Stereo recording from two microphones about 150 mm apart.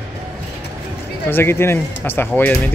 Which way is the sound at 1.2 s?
15° left (ahead or behind).